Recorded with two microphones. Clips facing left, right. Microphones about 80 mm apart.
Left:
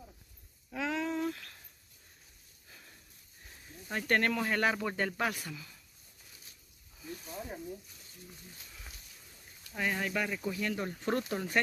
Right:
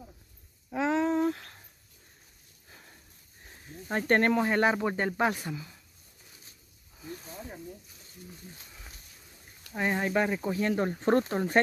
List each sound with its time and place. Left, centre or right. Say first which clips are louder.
0.7 s a sound: right 7 dB; right
3.7 s speech: right 5 dB; right
9.8 s speech: right 6 dB; right